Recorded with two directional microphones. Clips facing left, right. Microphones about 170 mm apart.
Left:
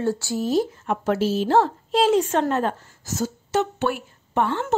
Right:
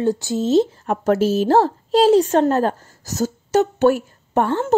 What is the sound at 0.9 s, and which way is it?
A woman's voice, 45° right (ahead or behind).